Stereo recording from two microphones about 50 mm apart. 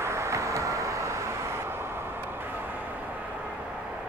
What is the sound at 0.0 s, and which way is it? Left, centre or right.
Vehicle, right.